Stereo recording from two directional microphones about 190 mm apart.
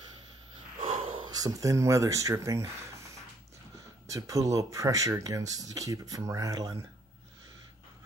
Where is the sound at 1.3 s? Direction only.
20° right (ahead or behind).